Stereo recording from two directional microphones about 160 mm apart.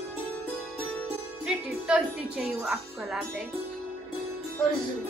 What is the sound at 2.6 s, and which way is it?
Speech, centre (ahead or behind).